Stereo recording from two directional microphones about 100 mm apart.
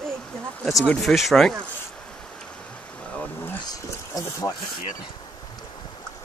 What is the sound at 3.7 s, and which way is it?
Speech, 35° left (ahead or behind).